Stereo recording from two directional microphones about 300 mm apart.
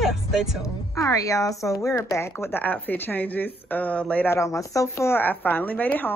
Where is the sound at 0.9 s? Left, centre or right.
Centre.